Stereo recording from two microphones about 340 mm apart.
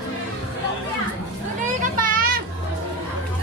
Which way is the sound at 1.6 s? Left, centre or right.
Right.